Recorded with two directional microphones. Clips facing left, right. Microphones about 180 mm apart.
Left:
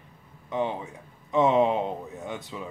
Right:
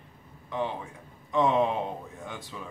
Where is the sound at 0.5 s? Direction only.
20° left (ahead or behind).